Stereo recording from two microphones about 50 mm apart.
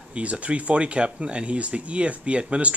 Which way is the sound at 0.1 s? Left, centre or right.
Right.